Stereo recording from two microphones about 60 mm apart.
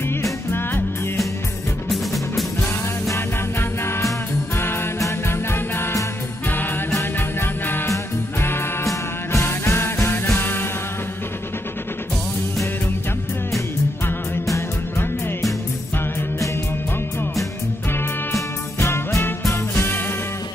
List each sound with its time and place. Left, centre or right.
0.5 s music: left
3.2 s music: left
7.0 s music: left
18.3 s music: left
19.5 s music: left